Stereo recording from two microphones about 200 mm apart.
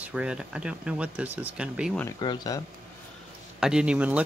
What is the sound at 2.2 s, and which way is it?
Speech, 20° left (ahead or behind).